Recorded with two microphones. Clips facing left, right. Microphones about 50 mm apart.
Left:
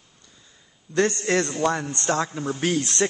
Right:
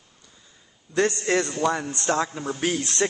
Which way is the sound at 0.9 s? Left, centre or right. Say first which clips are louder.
Left 1 dB; right.